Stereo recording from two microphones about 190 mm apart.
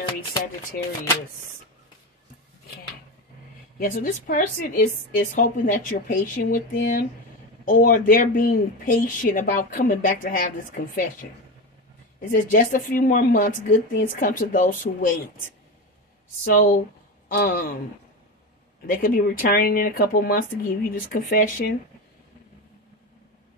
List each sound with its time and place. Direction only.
3.8 s speech: 50° left (ahead or behind)
12.2 s speech: 45° left (ahead or behind)
16.4 s speech: 45° left (ahead or behind)
18.9 s speech: 50° left (ahead or behind)